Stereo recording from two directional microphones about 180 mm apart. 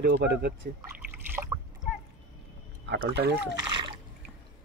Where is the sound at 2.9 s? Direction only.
65° right (ahead or behind).